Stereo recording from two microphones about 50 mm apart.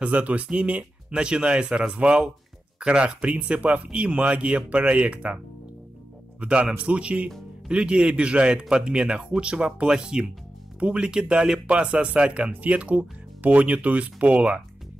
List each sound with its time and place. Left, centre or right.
0.0 s speech: right
6.4 s speech: right